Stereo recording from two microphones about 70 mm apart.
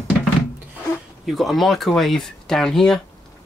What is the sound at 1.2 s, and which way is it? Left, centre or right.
Speech, centre.